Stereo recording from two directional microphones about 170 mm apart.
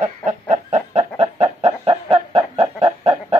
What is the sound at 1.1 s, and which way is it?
Chicken, 40° right (ahead or behind).